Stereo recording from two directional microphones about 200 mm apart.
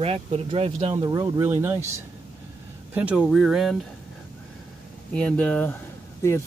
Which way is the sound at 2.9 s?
5° right (ahead or behind).